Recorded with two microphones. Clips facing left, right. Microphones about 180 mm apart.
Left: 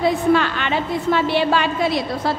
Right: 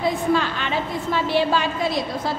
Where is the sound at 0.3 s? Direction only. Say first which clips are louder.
Left 4 dB; 65° left (ahead or behind).